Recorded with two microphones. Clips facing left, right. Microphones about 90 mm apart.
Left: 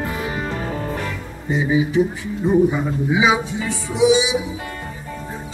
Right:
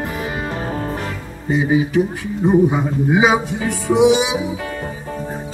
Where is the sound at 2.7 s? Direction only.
50° right (ahead or behind).